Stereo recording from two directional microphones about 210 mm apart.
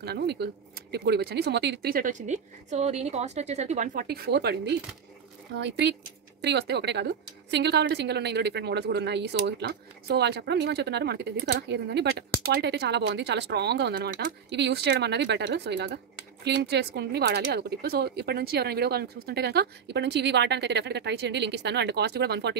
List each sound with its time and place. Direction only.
0.0 s a woman's voice: 50° right (ahead or behind)